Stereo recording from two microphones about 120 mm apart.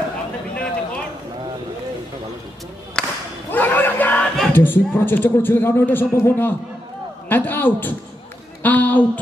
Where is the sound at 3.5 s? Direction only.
15° left (ahead or behind).